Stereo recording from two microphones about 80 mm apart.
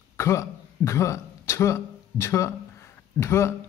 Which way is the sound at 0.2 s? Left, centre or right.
Left.